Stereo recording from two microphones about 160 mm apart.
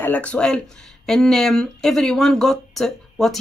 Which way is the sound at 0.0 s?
10° left (ahead or behind).